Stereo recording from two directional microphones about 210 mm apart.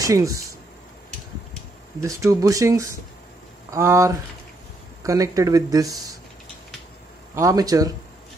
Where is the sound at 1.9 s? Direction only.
15° right (ahead or behind).